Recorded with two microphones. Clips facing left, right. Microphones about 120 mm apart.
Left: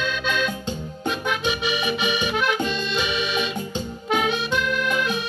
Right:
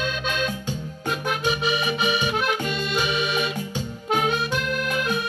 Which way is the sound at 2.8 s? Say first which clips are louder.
Right 1 dB; 50° right (ahead or behind).